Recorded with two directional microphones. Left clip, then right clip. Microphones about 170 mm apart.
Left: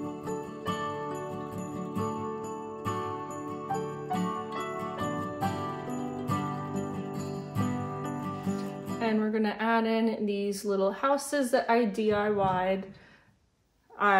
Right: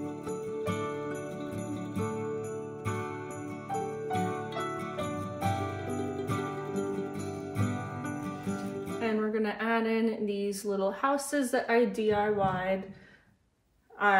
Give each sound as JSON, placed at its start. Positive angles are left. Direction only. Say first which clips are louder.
{"t": 9.0, "sound": "speech", "louder": "left 2 dB", "side_deg": 65}